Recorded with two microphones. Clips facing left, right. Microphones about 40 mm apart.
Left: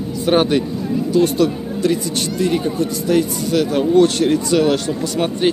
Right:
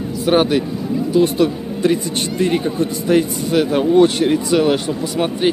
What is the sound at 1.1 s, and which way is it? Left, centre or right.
Speech, centre.